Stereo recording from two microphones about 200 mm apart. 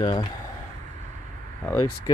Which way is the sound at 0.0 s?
20° left (ahead or behind).